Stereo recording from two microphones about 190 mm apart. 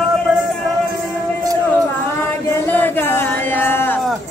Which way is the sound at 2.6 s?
10° left (ahead or behind).